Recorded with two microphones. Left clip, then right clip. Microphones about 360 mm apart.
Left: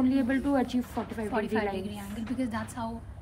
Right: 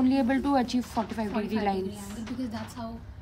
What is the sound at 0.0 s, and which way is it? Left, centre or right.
A woman's voice, right.